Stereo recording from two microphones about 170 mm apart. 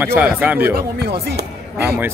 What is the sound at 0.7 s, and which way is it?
Speech, 70° right (ahead or behind).